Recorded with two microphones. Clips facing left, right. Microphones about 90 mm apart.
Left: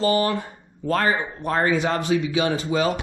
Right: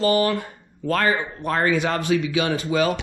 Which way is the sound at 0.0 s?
25° left (ahead or behind).